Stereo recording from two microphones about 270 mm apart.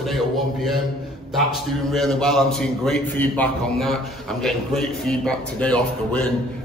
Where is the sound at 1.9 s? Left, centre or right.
Centre.